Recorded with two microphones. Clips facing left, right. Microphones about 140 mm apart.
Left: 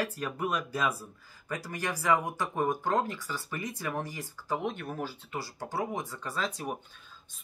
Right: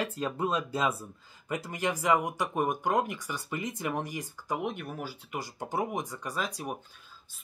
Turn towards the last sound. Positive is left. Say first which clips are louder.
# left 1 dB
turn(degrees=-10)  # may be behind; listen again after turning